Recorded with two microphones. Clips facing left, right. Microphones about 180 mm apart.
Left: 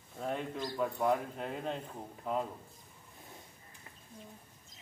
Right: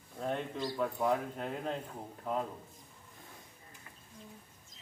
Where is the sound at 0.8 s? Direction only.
Centre (ahead or behind).